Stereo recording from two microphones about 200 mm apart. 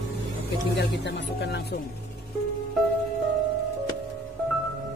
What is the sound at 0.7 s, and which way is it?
Speech, 60° left (ahead or behind).